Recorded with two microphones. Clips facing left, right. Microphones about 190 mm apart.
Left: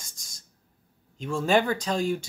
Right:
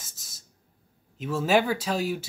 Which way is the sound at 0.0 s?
5° right (ahead or behind).